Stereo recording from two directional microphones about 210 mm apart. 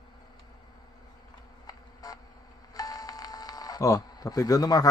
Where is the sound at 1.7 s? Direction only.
15° left (ahead or behind).